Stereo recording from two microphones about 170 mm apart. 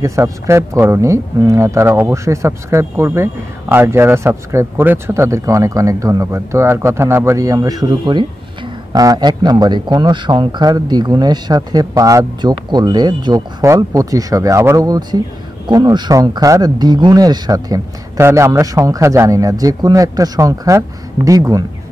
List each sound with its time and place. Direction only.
0.0 s a man's voice: 15° right (ahead or behind)